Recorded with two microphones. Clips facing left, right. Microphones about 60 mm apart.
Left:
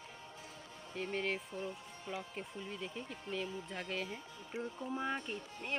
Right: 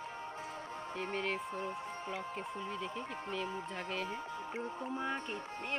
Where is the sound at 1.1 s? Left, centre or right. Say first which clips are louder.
Even; centre.